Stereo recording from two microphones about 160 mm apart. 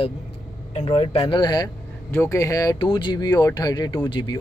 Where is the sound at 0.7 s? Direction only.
35° left (ahead or behind).